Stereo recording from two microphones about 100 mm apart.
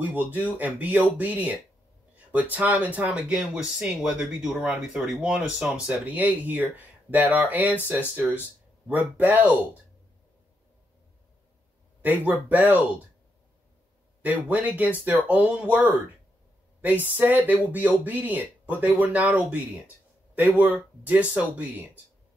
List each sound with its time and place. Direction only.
0.0 s speech: 15° right (ahead or behind)
12.0 s speech: 15° right (ahead or behind)
14.2 s speech: 15° right (ahead or behind)